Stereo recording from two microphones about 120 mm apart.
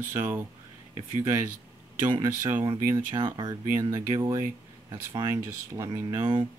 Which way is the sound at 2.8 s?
20° right (ahead or behind).